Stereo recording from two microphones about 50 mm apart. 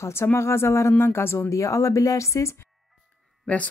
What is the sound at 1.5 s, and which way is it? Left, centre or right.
Speech, left.